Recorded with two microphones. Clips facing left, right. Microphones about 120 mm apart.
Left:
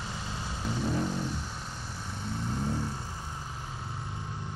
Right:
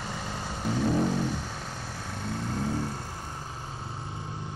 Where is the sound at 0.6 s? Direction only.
55° right (ahead or behind).